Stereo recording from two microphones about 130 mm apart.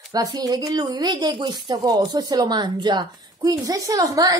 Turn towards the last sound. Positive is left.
turn(degrees=-25)  # may be behind; listen again after turning